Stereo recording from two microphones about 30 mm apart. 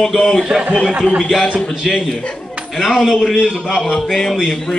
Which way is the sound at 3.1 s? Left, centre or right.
Centre.